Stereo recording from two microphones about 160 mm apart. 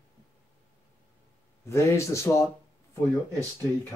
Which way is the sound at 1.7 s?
15° left (ahead or behind).